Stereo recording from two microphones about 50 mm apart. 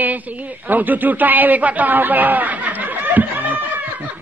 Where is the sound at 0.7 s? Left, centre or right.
Right.